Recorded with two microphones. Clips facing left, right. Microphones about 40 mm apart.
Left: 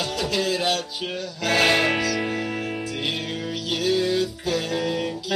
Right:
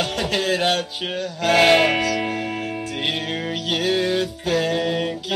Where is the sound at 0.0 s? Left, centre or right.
Right.